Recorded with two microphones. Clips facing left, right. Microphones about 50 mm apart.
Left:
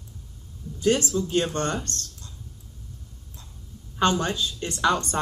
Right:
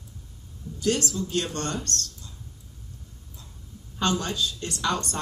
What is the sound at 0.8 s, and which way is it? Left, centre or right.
Speech, left.